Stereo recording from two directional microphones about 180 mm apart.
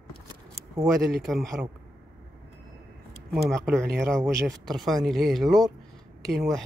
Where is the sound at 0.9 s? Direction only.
Centre (ahead or behind).